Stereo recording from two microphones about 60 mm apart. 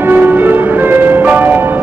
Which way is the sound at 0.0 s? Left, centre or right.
Right.